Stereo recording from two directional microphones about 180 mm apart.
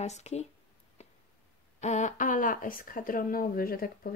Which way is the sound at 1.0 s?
40° left (ahead or behind).